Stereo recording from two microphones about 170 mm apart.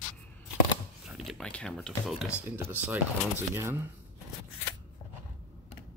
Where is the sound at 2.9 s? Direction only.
15° right (ahead or behind).